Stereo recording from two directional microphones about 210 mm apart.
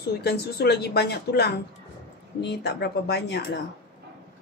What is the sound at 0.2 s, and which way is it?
A woman's voice, 50° left (ahead or behind).